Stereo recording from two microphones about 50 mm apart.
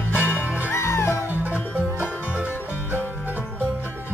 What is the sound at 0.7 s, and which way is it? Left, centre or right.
Music, left.